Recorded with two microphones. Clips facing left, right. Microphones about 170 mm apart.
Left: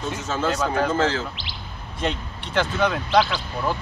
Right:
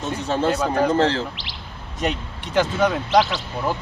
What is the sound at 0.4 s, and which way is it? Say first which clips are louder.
Speech: right 2 dB; 30° right (ahead or behind).